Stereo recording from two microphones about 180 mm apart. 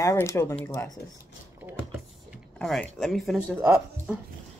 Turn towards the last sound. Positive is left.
turn(degrees=-10)  # may be behind; listen again after turning